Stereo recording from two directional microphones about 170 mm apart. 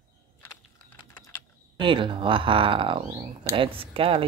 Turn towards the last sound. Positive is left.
turn(degrees=-35)  # may be behind; listen again after turning